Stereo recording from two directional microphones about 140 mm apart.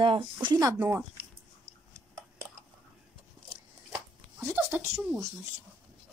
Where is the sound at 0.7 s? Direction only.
15° right (ahead or behind).